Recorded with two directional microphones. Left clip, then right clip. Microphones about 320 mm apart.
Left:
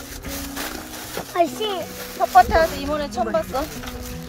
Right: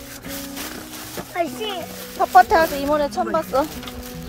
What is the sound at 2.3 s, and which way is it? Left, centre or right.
Speech, right.